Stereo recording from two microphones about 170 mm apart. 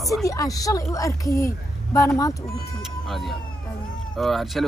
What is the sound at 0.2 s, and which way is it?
Speech, 20° left (ahead or behind).